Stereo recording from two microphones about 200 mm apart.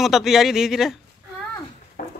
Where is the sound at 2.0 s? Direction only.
45° left (ahead or behind).